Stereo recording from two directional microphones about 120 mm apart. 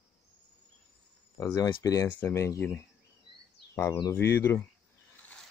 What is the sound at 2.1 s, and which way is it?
Speech, 20° left (ahead or behind).